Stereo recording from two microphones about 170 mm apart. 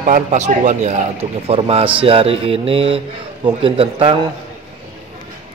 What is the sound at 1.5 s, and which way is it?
A man's voice, 35° right (ahead or behind).